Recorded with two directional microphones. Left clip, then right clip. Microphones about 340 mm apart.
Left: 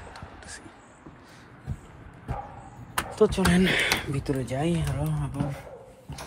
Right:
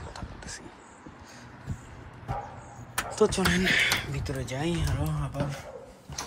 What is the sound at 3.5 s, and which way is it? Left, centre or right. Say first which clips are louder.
Speech: even; centre.